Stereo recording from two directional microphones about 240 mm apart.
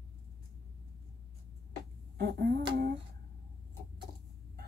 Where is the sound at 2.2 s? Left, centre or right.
Right.